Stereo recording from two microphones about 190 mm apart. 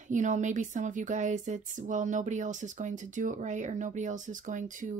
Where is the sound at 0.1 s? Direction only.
40° right (ahead or behind).